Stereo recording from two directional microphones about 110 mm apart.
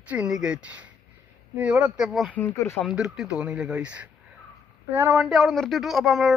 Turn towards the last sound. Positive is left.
turn(degrees=0)  # may be behind; listen again after turning